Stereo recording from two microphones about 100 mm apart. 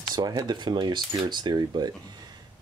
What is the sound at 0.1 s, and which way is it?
Speech, 45° right (ahead or behind).